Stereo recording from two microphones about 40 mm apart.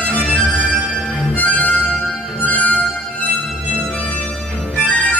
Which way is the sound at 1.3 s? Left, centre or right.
Left.